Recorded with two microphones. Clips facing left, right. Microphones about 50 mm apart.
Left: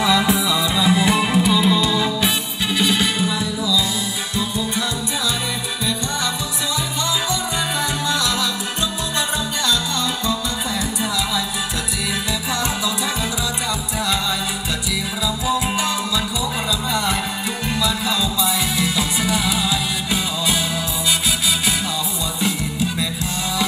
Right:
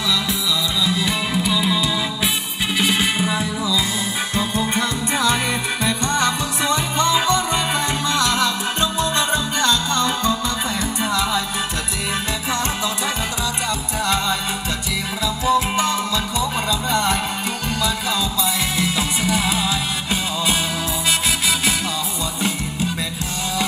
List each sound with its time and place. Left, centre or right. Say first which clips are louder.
0.0 s music: left 5 dB; left
1.1 s music: left 4 dB; centre
2.8 s music: even; right
4.4 s music: right 2 dB; right
18.4 s music: left 1 dB; right